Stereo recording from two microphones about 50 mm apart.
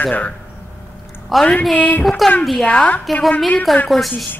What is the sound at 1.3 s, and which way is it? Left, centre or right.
Speech, centre.